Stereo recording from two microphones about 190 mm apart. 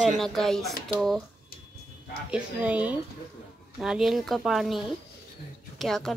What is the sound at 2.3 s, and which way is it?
A woman's voice, 5° right (ahead or behind).